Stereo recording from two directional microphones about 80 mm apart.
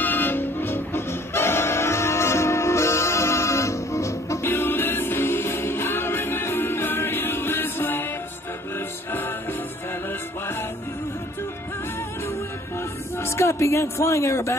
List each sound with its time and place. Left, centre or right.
0.0 s music: left
13.2 s a man's voice: left